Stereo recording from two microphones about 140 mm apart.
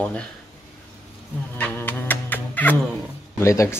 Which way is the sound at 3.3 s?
20° left (ahead or behind).